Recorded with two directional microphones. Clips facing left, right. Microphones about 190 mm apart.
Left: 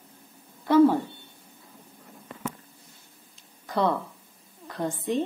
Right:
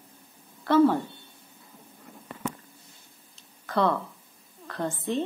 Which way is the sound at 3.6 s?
15° left (ahead or behind).